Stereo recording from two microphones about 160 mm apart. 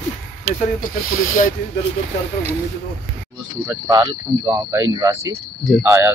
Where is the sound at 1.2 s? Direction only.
55° left (ahead or behind).